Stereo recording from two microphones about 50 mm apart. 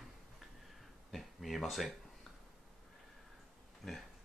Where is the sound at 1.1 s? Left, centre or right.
Centre.